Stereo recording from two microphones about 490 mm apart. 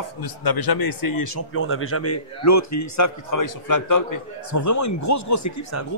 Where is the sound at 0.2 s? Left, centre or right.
Left.